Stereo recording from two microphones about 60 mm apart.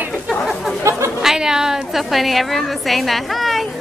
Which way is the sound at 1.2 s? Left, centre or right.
Centre.